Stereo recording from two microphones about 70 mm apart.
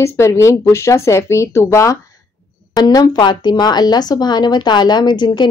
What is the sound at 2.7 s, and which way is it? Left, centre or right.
Speech, left.